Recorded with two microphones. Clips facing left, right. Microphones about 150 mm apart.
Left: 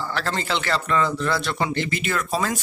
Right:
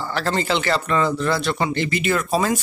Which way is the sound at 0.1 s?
10° right (ahead or behind).